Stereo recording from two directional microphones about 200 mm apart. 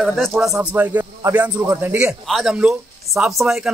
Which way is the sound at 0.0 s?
Centre (ahead or behind).